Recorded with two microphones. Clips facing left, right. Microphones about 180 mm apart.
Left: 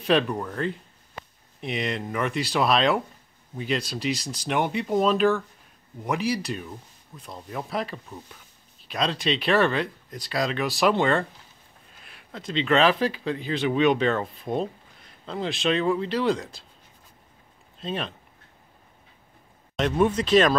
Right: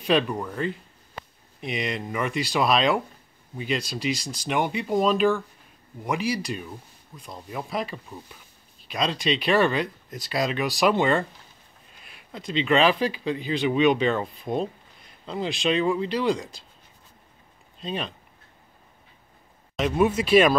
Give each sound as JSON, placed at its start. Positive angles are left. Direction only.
{"t": 0.0, "sound": "speech", "side_deg": -5}
{"t": 10.0, "sound": "speech", "side_deg": -20}
{"t": 10.6, "sound": "speech", "side_deg": 0}
{"t": 17.7, "sound": "speech", "side_deg": 0}
{"t": 19.8, "sound": "speech", "side_deg": -5}